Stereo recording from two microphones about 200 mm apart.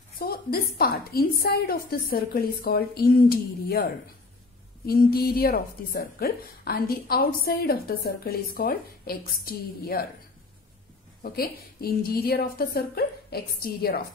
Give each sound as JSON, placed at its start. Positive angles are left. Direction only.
{"t": 0.2, "sound": "a sound", "side_deg": 50}
{"t": 0.7, "sound": "speech", "side_deg": 50}
{"t": 11.2, "sound": "speech", "side_deg": 50}